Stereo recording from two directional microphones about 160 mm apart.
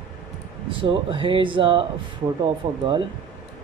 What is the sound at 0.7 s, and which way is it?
Speech, 30° right (ahead or behind).